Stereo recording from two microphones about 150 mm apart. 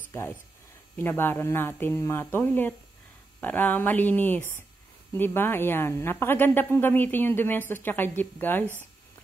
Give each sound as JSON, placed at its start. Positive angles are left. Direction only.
{"t": 0.9, "sound": "a woman's voice", "side_deg": 15}